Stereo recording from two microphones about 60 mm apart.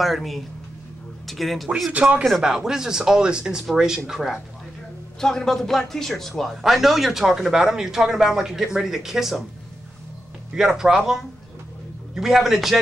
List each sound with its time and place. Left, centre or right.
0.0 s speech: centre
1.9 s speech: right
2.4 s speech: centre
5.2 s speech: centre
10.5 s speech: centre